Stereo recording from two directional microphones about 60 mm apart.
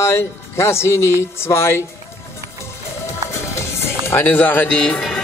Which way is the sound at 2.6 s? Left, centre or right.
Left.